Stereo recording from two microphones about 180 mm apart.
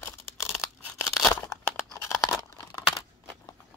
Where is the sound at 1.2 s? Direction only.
15° left (ahead or behind).